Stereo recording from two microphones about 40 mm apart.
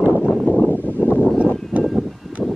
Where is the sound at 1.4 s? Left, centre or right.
Centre.